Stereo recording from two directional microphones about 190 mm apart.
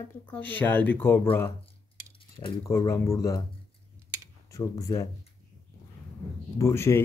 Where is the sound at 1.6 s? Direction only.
30° left (ahead or behind).